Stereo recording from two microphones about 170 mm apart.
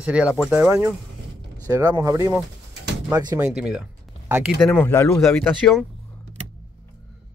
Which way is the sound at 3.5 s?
5° right (ahead or behind).